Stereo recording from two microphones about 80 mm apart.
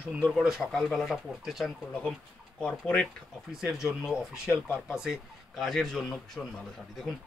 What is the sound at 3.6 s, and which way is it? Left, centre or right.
Speech, centre.